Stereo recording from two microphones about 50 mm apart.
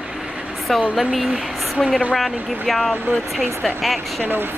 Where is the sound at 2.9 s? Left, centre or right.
Right.